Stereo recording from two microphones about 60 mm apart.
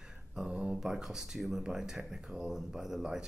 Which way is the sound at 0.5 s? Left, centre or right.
Right.